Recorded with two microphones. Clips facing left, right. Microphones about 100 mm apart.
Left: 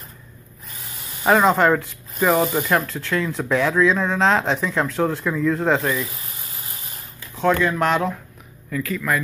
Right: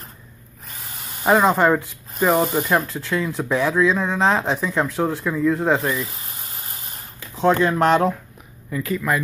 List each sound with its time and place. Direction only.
1.2 s speech: 10° right (ahead or behind)
6.0 s a sound: 35° right (ahead or behind)
7.3 s speech: 25° right (ahead or behind)
8.6 s speech: 20° right (ahead or behind)